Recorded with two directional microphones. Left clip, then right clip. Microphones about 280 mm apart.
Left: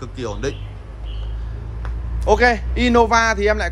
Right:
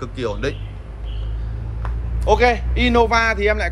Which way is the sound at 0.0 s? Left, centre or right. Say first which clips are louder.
Right 2 dB; centre.